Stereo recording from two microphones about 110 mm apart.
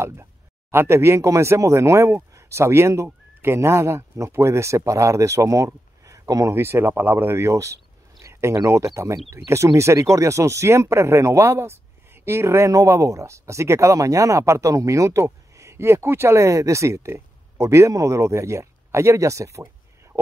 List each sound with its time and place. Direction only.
0.0 s speech: 25° right (ahead or behind)